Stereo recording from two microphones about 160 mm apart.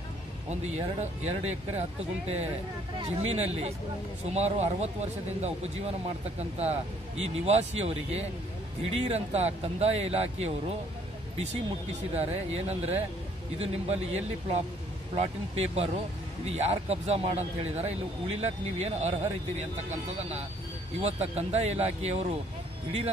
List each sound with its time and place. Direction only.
0.5 s speech: 45° right (ahead or behind)
12.2 s speech: 40° right (ahead or behind)